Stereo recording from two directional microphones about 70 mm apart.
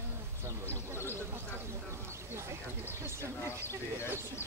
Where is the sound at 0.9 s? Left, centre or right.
Left.